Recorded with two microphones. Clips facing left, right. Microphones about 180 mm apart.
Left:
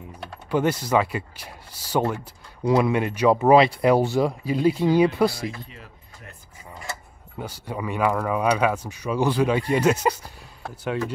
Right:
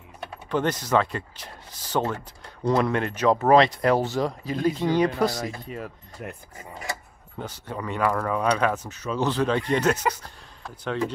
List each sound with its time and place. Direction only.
0.5 s speech: 10° left (ahead or behind)
5.5 s speech: 50° right (ahead or behind)
7.3 s speech: 10° left (ahead or behind)